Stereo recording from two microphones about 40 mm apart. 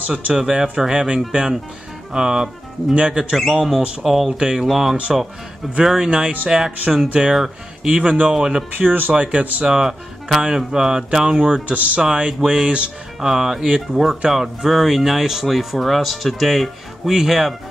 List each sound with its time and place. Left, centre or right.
0.1 s speech: centre
3.5 s speech: centre
4.3 s speech: right
4.6 s speech: centre
6.0 s speech: right
9.1 s speech: right
9.7 s speech: centre
11.6 s speech: right
12.0 s speech: right
13.2 s speech: centre